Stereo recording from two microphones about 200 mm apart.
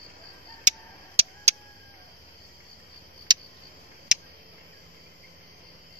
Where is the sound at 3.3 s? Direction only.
20° right (ahead or behind).